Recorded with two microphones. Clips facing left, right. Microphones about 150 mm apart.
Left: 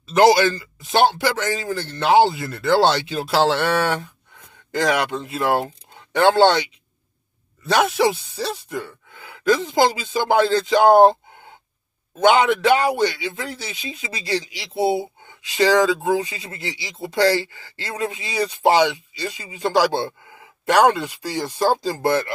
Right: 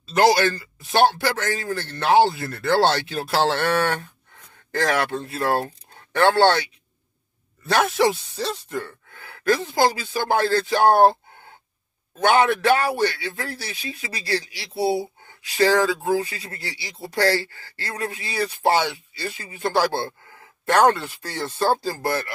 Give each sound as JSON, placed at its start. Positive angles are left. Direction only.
{"t": 0.9, "sound": "speech", "side_deg": 15}
{"t": 4.7, "sound": "a man's voice", "side_deg": 15}
{"t": 7.7, "sound": "speech", "side_deg": 15}
{"t": 12.2, "sound": "a man's voice", "side_deg": 20}